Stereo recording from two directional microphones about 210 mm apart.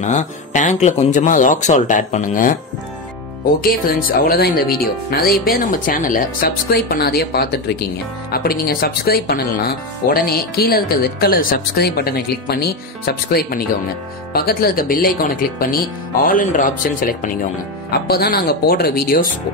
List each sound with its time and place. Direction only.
0.0 s speech: 35° left (ahead or behind)
3.6 s speech: 45° left (ahead or behind)
16.3 s speech: 40° left (ahead or behind)